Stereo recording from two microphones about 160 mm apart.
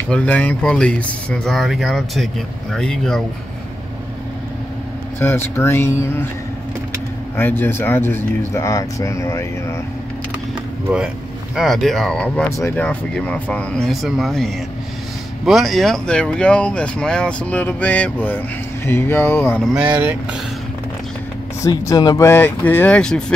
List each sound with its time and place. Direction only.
0.1 s speech: 10° left (ahead or behind)
5.2 s speech: 15° left (ahead or behind)
7.3 s speech: 15° left (ahead or behind)
10.9 s speech: 5° right (ahead or behind)
12.4 s speech: 20° left (ahead or behind)
19.6 s speech: 5° right (ahead or behind)
21.6 s speech: 20° left (ahead or behind); by 23.2 s 5° left (ahead or behind)